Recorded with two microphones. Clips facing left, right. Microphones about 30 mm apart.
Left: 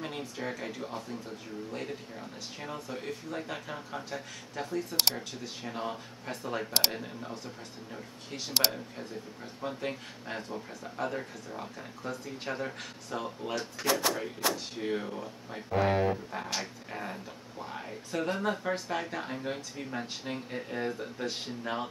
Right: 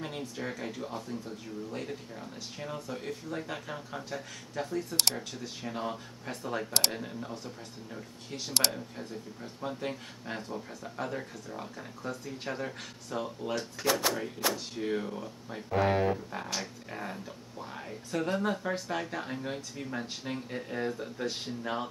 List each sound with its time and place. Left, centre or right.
0.0 s speech: centre